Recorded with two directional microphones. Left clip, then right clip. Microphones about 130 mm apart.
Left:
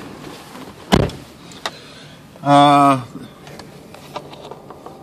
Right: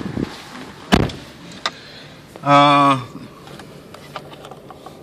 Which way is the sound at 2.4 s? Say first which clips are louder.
Left 1 dB; 10° left (ahead or behind).